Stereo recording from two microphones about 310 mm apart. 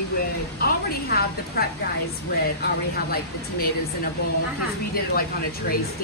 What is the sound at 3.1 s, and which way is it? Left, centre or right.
Speech, left.